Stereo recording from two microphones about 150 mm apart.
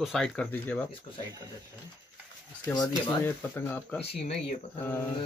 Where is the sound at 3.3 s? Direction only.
15° left (ahead or behind).